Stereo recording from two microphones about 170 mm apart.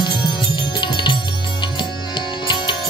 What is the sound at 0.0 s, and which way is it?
Music, 25° left (ahead or behind).